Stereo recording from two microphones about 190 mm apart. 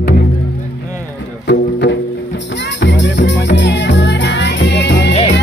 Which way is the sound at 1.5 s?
65° left (ahead or behind).